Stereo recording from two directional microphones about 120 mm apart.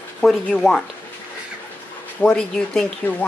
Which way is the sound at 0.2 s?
5° left (ahead or behind).